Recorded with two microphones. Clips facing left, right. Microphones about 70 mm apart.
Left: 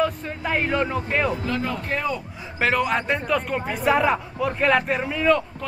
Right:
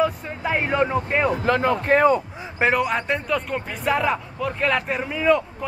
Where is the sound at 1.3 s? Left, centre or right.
Right.